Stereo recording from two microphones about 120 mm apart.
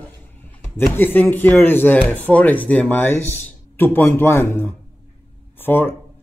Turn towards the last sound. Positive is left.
turn(degrees=20)  # may be behind; listen again after turning